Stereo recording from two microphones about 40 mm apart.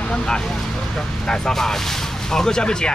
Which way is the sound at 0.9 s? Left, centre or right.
Centre.